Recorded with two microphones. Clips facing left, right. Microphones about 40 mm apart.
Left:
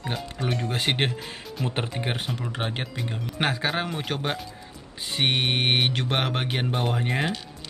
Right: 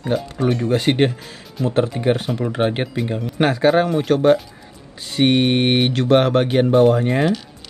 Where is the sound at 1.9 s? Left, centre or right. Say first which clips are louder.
Right 10 dB; centre.